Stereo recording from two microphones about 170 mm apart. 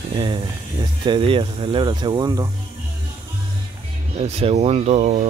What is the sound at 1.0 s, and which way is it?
Speech, 30° right (ahead or behind).